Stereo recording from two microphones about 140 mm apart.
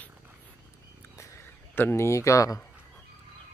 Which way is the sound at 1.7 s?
15° left (ahead or behind).